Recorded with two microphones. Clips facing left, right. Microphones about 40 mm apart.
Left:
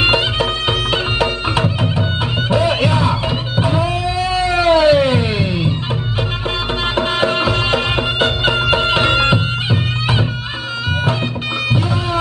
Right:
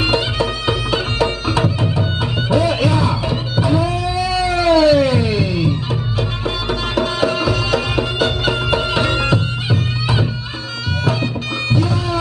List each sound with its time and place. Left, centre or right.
0.0 s music: left
7.0 s music: left